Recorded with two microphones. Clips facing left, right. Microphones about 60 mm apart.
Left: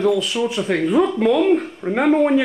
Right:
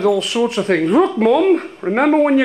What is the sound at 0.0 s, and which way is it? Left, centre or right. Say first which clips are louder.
Speech: right 3 dB; centre.